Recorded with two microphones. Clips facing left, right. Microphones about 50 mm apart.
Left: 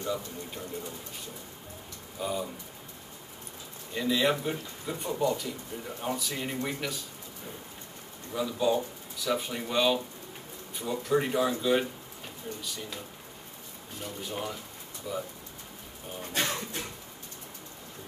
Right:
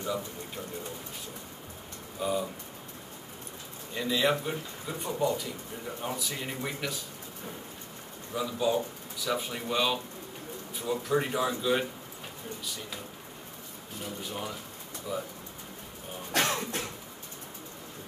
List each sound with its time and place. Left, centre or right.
2.1 s speech: centre
3.9 s speech: centre
8.3 s speech: centre
14.0 s speech: centre
16.3 s music: right